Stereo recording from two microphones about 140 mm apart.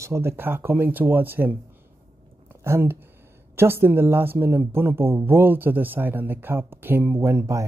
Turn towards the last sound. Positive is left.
turn(degrees=-20)  # may be behind; listen again after turning